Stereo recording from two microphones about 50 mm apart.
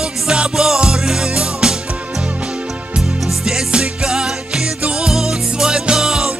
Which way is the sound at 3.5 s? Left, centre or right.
Centre.